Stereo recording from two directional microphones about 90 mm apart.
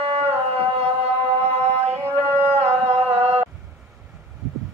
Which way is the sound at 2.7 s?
30° right (ahead or behind).